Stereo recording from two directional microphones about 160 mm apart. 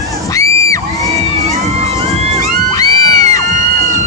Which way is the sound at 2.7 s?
20° left (ahead or behind).